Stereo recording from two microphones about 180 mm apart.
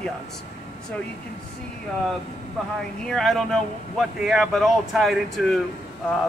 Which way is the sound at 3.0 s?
Centre (ahead or behind).